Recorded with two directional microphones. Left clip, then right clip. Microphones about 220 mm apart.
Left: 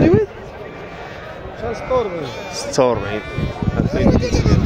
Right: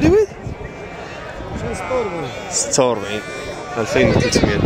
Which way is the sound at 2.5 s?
5° left (ahead or behind).